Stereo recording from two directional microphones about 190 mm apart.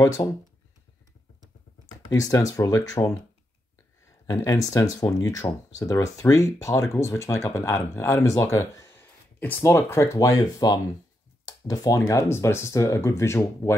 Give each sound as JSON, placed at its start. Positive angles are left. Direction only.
{"t": 0.0, "sound": "speech", "side_deg": 20}
{"t": 2.3, "sound": "speech", "side_deg": 15}
{"t": 4.3, "sound": "speech", "side_deg": 15}